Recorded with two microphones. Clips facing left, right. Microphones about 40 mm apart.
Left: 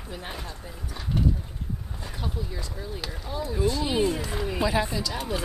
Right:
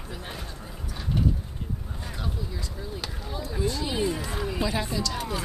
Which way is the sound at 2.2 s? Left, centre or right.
Centre.